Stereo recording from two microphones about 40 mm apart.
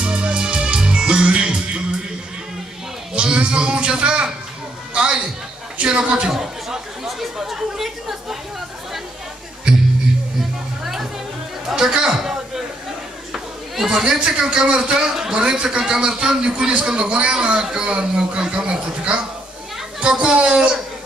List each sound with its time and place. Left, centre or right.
0.0 s music: right
3.1 s music: right
5.8 s speech: right
6.3 s chatter: centre
10.8 s music: centre
11.6 s a sound: centre
13.3 s chatter: centre
14.4 s speech: centre